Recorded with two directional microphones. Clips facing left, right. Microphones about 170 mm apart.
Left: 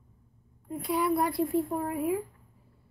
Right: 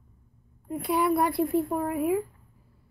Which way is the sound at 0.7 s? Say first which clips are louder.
Right 3 dB; 65° right (ahead or behind).